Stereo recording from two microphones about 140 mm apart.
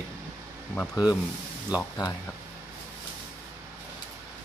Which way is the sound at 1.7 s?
25° left (ahead or behind).